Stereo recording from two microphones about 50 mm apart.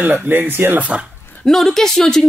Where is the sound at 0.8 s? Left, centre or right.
Right.